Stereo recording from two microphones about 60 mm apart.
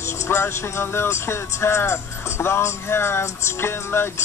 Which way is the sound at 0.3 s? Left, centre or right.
Left.